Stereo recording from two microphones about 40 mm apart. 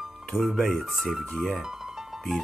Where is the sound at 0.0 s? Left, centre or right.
Centre.